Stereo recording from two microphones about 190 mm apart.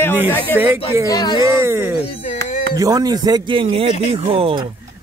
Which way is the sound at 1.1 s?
20° left (ahead or behind).